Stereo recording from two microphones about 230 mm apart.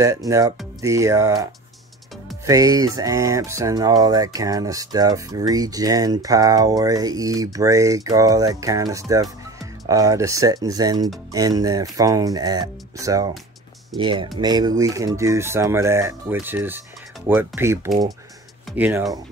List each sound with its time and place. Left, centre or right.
0.0 s speech: centre